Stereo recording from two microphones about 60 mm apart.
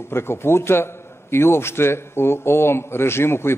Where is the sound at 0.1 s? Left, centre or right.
Left.